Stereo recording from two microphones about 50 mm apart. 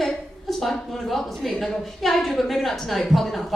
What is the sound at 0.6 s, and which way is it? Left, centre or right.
A woman's voice, centre.